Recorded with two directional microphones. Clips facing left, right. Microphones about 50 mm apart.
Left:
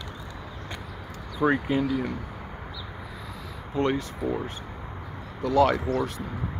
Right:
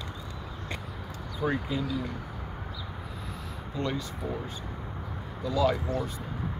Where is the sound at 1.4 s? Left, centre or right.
Left.